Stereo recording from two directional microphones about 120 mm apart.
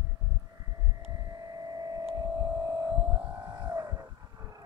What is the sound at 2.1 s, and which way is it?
Hum, 35° right (ahead or behind).